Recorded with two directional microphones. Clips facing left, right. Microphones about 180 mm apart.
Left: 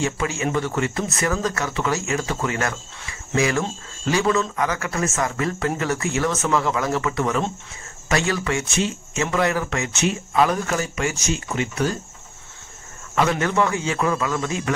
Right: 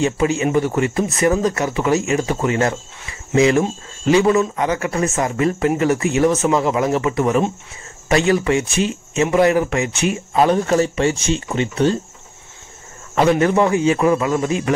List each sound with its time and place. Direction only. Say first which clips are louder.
0.0 s a man's voice: right 6 dB; 20° right (ahead or behind)
10.3 s speech: right 6 dB; 30° right (ahead or behind)
13.1 s speech: right 6 dB; 30° right (ahead or behind)
13.5 s speech: right 7 dB; 20° right (ahead or behind)